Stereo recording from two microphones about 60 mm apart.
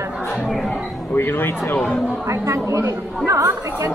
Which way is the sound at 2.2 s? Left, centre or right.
Right.